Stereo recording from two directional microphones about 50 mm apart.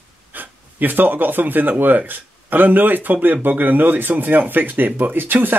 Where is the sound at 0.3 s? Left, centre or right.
Right.